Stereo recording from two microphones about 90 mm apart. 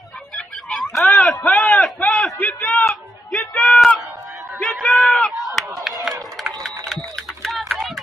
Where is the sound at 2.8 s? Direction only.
5° left (ahead or behind).